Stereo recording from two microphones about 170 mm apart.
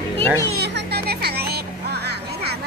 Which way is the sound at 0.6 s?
75° right (ahead or behind).